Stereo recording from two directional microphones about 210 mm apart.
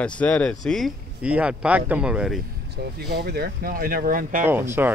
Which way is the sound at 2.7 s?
50° right (ahead or behind).